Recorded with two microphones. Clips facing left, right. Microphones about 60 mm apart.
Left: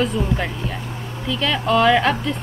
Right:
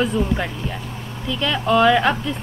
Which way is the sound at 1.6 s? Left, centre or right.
Centre.